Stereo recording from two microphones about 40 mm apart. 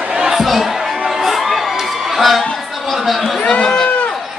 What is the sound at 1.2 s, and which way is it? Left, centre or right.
Music, centre.